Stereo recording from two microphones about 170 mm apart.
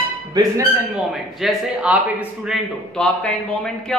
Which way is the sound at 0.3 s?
20° right (ahead or behind).